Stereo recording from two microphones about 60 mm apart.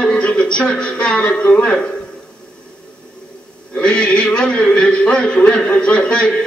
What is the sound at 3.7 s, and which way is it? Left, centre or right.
A man's voice, centre.